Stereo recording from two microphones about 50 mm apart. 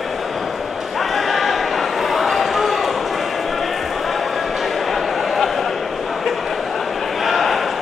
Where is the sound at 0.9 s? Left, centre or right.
Centre.